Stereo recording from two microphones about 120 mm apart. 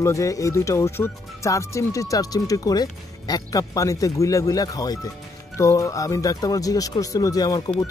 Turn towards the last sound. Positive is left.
turn(degrees=30)  # may be behind; listen again after turning